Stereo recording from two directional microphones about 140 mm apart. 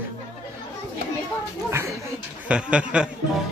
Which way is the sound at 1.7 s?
15° right (ahead or behind).